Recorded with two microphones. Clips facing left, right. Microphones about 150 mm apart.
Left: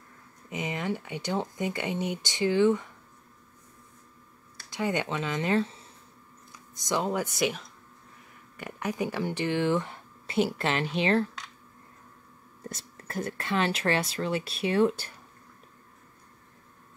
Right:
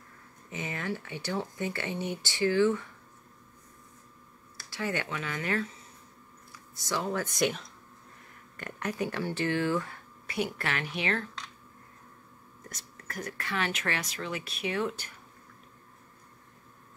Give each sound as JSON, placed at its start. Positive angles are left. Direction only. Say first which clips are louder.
{"t": 0.5, "sound": "speech", "louder": "left 4 dB", "side_deg": 15}
{"t": 4.6, "sound": "speech", "louder": "left 4 dB", "side_deg": 20}
{"t": 6.5, "sound": "speech", "louder": "left 4 dB", "side_deg": 20}
{"t": 12.6, "sound": "speech", "louder": "left 6 dB", "side_deg": 30}